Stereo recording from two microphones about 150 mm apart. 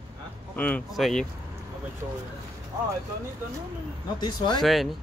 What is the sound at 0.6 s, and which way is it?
Speech, 10° left (ahead or behind).